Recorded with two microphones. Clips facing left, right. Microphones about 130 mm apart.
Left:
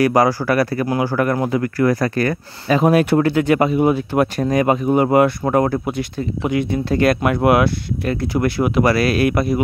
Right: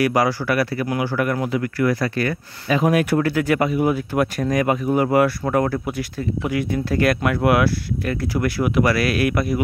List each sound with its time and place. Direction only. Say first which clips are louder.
0.0 s speech: left 4 dB; 40° left (ahead or behind)